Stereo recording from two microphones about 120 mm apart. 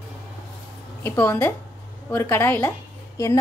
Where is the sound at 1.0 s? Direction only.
15° left (ahead or behind).